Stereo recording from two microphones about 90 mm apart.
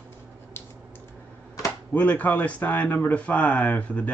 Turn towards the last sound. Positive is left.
turn(degrees=20)  # may be behind; listen again after turning